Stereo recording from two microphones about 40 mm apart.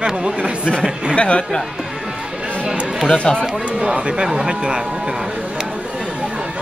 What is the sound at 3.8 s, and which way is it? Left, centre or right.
Speech, right.